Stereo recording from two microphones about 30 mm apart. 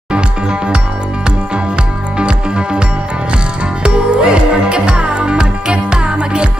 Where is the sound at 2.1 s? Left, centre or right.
Right.